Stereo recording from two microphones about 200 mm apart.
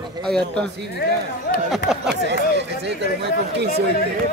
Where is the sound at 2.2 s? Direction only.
60° right (ahead or behind).